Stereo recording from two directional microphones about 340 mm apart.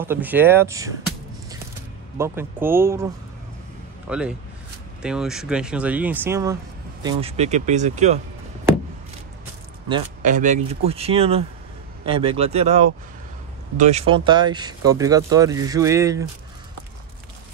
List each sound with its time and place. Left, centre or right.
0.0 s speech: centre
2.1 s speech: centre
4.1 s speech: centre
9.8 s speech: centre